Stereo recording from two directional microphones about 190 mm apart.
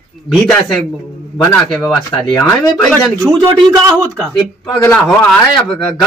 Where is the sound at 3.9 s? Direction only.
Centre (ahead or behind).